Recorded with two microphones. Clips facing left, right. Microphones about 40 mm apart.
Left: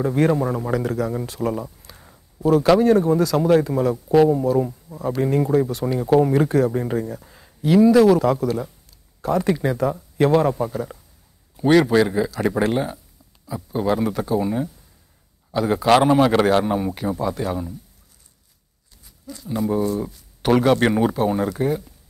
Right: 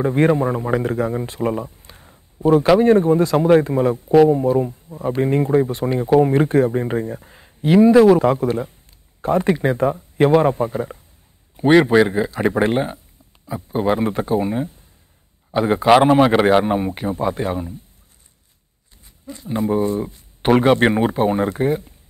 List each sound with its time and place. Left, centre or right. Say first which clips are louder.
0.0 s a man's voice: right 3 dB; right
19.2 s speech: right 2 dB; right